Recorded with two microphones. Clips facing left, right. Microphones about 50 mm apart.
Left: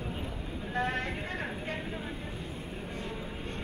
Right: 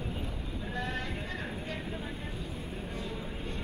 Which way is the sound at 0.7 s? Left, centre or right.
Left.